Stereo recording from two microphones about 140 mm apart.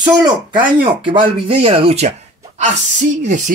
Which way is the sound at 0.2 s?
35° right (ahead or behind).